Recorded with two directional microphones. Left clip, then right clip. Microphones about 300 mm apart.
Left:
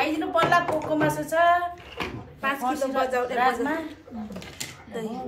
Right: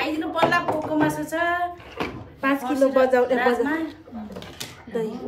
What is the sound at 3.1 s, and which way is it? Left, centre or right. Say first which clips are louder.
Speech: right 7 dB; right.